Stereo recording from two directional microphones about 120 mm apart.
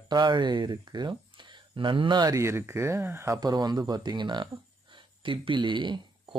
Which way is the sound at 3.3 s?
35° right (ahead or behind).